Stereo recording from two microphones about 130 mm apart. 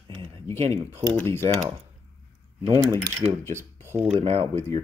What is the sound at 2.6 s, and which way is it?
Speech, 30° right (ahead or behind).